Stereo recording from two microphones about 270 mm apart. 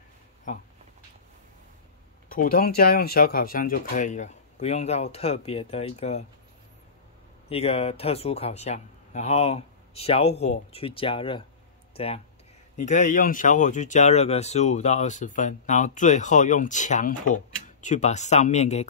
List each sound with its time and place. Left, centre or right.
2.2 s speech: left
7.4 s speech: left
10.3 s speech: left
10.7 s speech: left